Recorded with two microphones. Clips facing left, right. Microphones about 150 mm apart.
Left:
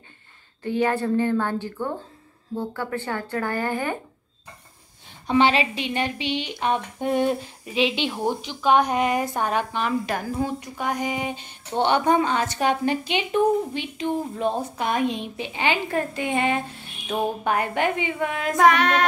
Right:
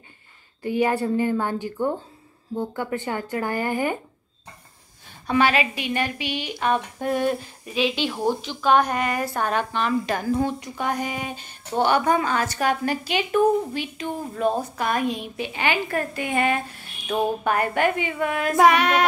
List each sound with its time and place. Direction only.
0.6 s speech: 10° right (ahead or behind)
5.2 s a woman's voice: 25° left (ahead or behind)
18.6 s speech: 10° right (ahead or behind)